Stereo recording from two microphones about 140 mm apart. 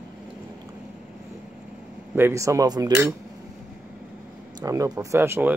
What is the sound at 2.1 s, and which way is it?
Speech, 20° right (ahead or behind).